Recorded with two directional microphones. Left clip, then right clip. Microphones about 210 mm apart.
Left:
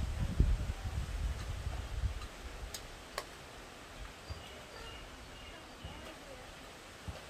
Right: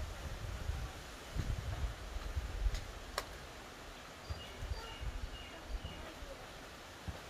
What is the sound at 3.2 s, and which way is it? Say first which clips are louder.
Tick-tock: right 1 dB; 5° right (ahead or behind).